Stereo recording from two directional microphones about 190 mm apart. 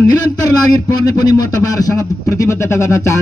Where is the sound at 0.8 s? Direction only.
20° left (ahead or behind).